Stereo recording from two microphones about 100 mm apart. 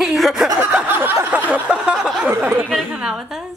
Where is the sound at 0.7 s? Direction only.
15° right (ahead or behind).